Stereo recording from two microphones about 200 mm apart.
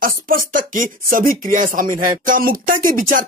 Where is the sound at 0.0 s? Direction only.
45° right (ahead or behind).